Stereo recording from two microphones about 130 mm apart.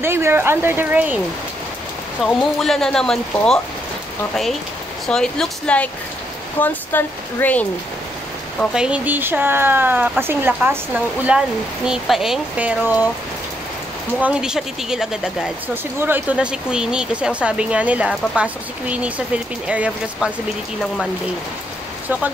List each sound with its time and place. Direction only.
0.0 s speech: 20° right (ahead or behind)
2.2 s speech: 5° left (ahead or behind)
5.0 s speech: 5° left (ahead or behind)
8.7 s speech: 10° right (ahead or behind)
11.2 s speech: 5° right (ahead or behind)
14.2 s speech: 5° right (ahead or behind)
15.7 s speech: 15° right (ahead or behind)